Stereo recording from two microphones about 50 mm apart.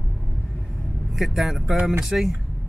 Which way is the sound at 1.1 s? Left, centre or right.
Centre.